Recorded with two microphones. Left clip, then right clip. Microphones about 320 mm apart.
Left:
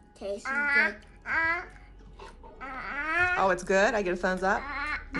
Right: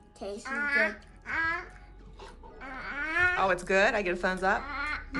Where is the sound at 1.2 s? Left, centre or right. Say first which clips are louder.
Left 3 dB; left.